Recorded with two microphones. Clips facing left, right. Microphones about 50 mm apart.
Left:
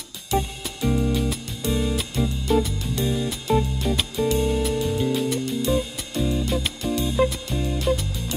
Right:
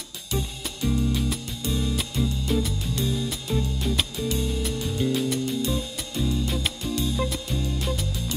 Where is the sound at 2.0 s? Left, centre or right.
Centre.